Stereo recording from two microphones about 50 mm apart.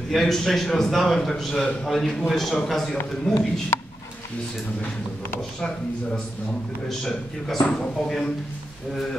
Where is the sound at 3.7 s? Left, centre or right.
Left.